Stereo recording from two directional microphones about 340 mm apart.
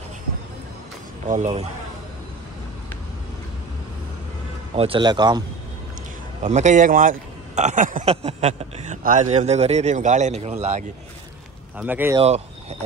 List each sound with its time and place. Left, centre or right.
1.3 s a man's voice: centre
4.7 s a man's voice: centre
6.4 s a man's voice: right
11.8 s speech: centre
12.2 s speech: centre